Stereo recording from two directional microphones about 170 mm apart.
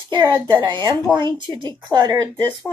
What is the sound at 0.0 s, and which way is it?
Speech, 25° right (ahead or behind).